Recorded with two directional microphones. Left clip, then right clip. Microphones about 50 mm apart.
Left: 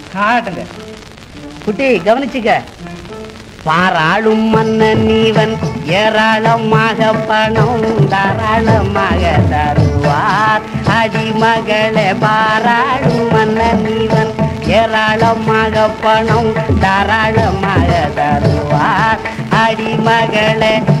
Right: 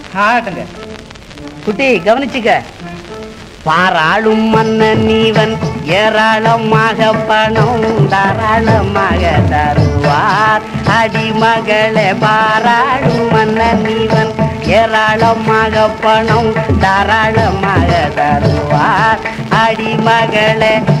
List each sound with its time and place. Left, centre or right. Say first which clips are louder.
0.1 s music: right 2 dB; right
1.8 s music: right 1 dB; right
3.9 s music: right 1 dB; right
7.9 s music: right 2 dB; right
11.1 s music: right 1 dB; right
11.5 s music: right 2 dB; centre
11.9 s music: right 1 dB; right
18.2 s music: right 2 dB; right
19.2 s music: right 1 dB; right